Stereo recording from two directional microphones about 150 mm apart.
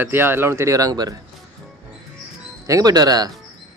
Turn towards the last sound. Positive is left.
turn(degrees=-25)  # may be behind; listen again after turning